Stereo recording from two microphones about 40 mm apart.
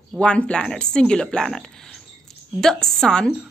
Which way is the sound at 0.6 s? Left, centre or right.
Centre.